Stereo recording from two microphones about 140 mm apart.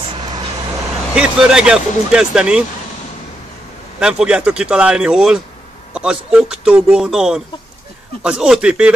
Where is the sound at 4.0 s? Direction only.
5° right (ahead or behind).